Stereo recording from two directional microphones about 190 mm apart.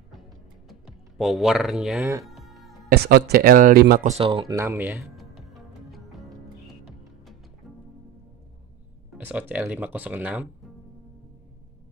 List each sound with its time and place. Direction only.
0.7 s typing: centre (ahead or behind)
2.2 s music: centre (ahead or behind)
2.9 s speech: 55° right (ahead or behind)
4.1 s speech: 30° right (ahead or behind)
4.6 s music: 10° right (ahead or behind)
9.2 s speech: 10° right (ahead or behind)